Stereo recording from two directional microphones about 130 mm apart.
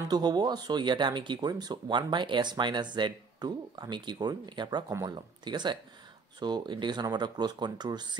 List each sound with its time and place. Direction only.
0.1 s speech: 30° right (ahead or behind)